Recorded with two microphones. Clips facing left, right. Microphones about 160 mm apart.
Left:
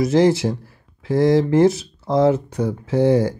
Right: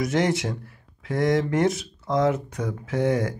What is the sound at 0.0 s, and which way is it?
Speech, 30° left (ahead or behind).